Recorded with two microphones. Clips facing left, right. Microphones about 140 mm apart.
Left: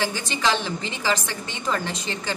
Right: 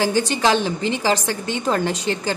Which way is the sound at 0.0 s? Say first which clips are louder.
Right 6 dB; 50° right (ahead or behind).